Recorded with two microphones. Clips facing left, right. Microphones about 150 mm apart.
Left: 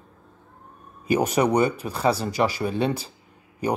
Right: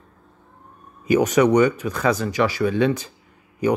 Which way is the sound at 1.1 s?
35° left (ahead or behind).